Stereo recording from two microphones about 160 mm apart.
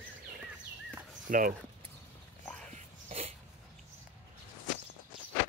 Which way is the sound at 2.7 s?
40° right (ahead or behind).